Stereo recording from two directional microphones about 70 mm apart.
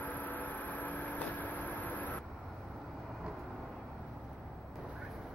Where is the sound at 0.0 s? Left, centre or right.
Left.